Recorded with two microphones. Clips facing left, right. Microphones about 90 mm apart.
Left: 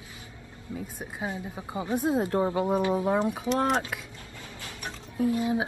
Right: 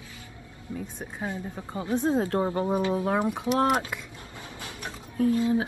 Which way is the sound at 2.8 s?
20° left (ahead or behind).